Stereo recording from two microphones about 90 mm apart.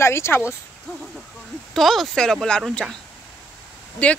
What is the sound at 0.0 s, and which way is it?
Speech, 30° left (ahead or behind).